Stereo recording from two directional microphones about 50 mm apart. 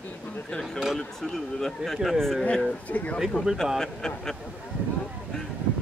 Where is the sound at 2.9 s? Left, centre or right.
Left.